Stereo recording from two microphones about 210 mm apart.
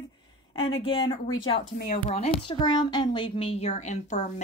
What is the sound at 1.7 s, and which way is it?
Speech, 40° left (ahead or behind).